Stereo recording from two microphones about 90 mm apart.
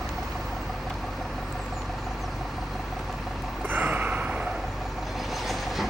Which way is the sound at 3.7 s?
20° right (ahead or behind).